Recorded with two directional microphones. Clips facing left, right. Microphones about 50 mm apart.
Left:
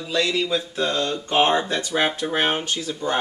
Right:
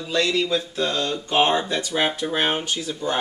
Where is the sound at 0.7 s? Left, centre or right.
Left.